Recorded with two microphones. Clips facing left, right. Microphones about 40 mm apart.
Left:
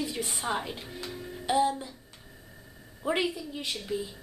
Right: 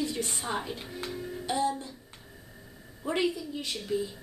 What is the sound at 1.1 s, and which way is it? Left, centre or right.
Music, centre.